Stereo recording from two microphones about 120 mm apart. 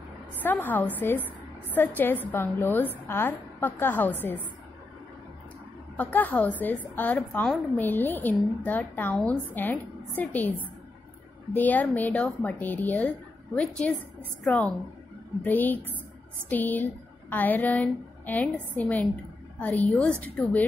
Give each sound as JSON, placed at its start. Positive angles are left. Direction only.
{"t": 0.4, "sound": "a woman's voice", "side_deg": 15}
{"t": 5.9, "sound": "a woman's voice", "side_deg": 15}